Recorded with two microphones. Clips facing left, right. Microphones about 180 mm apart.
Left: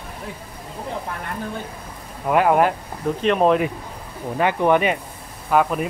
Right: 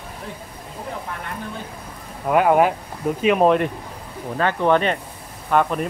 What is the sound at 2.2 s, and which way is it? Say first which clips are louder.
Speech: right 1 dB; centre (ahead or behind).